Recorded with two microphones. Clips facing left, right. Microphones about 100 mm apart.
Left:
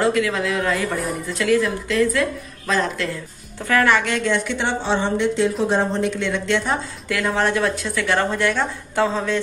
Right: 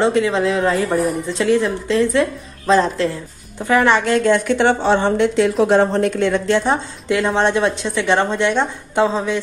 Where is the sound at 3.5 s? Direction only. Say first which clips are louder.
Right 3 dB; 20° right (ahead or behind).